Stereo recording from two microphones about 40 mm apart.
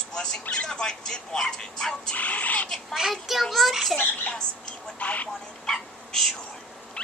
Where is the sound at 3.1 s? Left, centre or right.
Centre.